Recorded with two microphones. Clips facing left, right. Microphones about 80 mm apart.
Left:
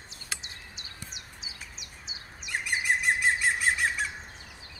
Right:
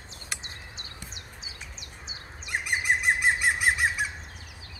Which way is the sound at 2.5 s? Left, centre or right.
Centre.